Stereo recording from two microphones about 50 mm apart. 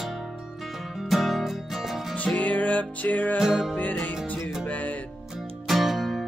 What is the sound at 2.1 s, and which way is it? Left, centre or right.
Music, left.